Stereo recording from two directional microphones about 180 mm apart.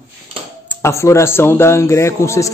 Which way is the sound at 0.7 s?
15° left (ahead or behind).